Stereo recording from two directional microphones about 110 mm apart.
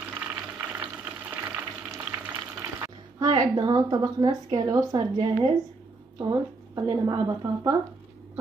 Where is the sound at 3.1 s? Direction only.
35° right (ahead or behind).